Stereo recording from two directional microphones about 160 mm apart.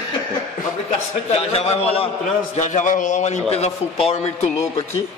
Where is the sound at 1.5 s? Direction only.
40° left (ahead or behind).